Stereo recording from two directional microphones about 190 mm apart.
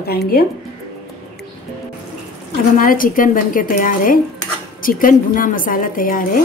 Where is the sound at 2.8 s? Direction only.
45° left (ahead or behind).